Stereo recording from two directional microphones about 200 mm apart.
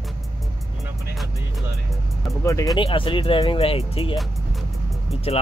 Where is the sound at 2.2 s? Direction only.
15° left (ahead or behind).